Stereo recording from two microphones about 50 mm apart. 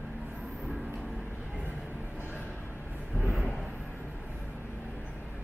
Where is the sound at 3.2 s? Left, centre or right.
Left.